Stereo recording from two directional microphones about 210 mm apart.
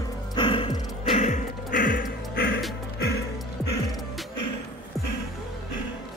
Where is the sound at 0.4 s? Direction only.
25° left (ahead or behind); by 3.3 s 50° left (ahead or behind).